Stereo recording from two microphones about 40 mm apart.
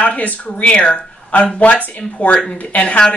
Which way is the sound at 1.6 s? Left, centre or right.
Left.